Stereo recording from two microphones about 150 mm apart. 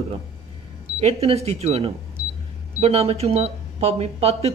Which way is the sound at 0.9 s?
45° right (ahead or behind).